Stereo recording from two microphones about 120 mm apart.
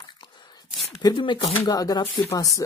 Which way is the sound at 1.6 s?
35° left (ahead or behind).